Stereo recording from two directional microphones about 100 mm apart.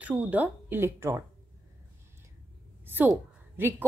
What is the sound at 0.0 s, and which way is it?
Speech, 15° right (ahead or behind).